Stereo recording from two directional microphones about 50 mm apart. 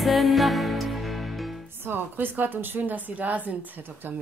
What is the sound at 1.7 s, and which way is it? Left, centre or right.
A woman's voice, right.